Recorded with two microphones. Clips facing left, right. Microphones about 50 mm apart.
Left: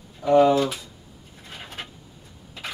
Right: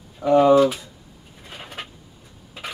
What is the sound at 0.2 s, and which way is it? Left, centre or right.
Speech, centre.